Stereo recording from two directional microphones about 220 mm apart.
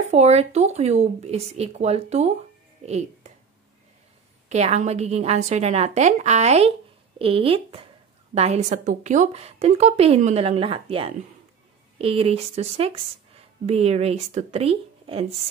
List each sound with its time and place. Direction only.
0.1 s a woman's voice: 30° right (ahead or behind)
2.8 s music: 30° right (ahead or behind)
4.5 s a woman's voice: 30° right (ahead or behind)